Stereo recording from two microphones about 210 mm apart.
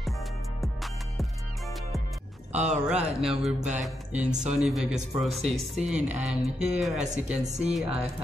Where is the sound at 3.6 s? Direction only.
35° right (ahead or behind).